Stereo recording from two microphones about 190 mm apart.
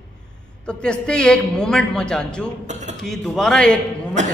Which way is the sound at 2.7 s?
40° right (ahead or behind).